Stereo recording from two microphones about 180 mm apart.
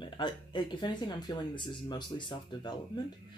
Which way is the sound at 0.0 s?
25° left (ahead or behind).